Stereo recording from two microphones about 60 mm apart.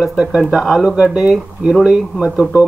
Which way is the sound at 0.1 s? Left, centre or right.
Centre.